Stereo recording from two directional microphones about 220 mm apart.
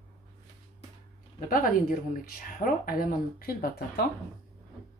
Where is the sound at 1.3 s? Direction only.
40° left (ahead or behind).